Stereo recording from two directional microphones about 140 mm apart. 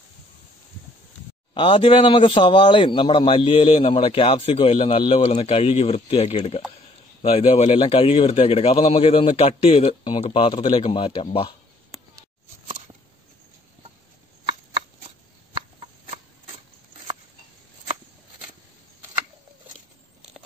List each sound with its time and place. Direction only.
1.5 s a man's voice: 40° left (ahead or behind)
10.2 s a man's voice: 40° left (ahead or behind)
11.9 s a sound: centre (ahead or behind)